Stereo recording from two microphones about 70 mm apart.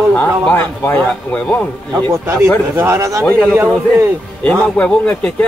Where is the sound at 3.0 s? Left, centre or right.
Right.